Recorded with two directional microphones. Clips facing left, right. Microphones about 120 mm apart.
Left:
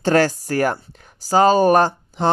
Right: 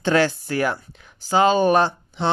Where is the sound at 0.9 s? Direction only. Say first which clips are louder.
Left 3 dB; 45° left (ahead or behind).